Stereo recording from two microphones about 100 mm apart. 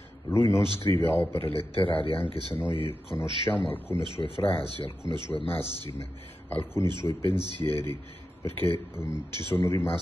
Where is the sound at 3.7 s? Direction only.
20° left (ahead or behind).